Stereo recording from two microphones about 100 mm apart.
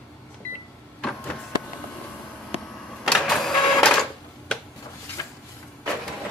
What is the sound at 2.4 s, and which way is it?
Printer, 5° right (ahead or behind).